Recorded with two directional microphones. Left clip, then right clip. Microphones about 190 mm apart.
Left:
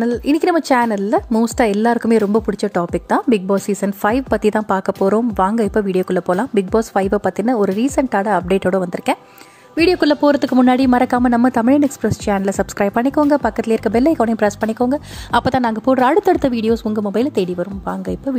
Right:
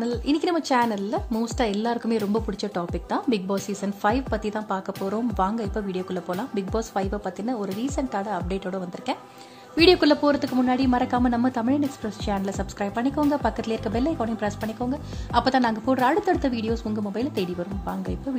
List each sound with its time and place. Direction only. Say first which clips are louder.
0.0 s a woman's voice: left 8 dB; 35° left (ahead or behind)